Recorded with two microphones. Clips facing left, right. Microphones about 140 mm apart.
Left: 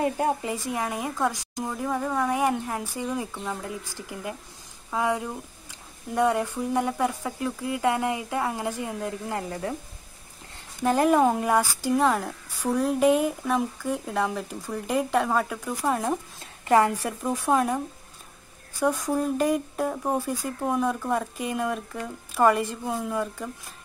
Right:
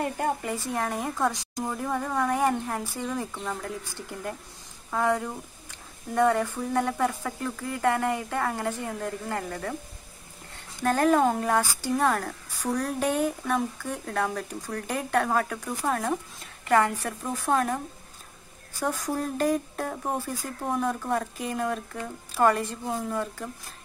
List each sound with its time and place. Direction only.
0.0 s speech: 15° left (ahead or behind)
0.7 s a woman's voice: 5° left (ahead or behind)
10.8 s a woman's voice: 5° left (ahead or behind)
16.6 s a woman's voice: 20° left (ahead or behind)
17.0 s a woman's voice: 5° left (ahead or behind)